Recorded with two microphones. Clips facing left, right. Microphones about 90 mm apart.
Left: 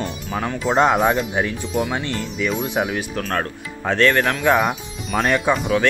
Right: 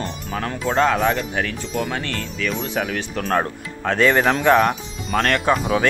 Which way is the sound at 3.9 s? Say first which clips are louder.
Right 1 dB; 5° right (ahead or behind).